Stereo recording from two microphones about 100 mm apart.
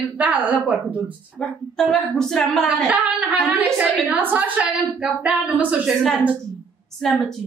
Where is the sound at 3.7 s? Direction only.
20° right (ahead or behind).